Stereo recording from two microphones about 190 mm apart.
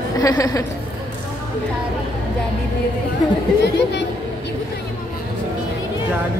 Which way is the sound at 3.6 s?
65° left (ahead or behind).